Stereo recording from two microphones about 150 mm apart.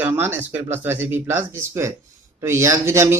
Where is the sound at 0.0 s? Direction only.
15° right (ahead or behind).